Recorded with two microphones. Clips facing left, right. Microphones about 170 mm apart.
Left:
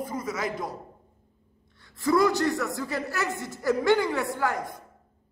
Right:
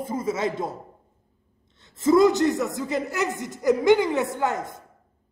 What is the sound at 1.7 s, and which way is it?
A man's voice, 20° right (ahead or behind).